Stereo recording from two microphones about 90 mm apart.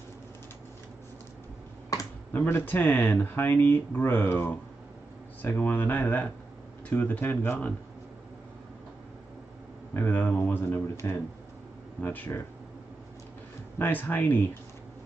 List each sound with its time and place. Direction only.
2.3 s speech: 25° left (ahead or behind)
9.9 s speech: 20° left (ahead or behind)
13.7 s speech: 20° left (ahead or behind)